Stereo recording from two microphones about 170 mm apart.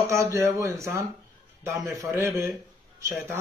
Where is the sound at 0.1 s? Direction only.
15° right (ahead or behind).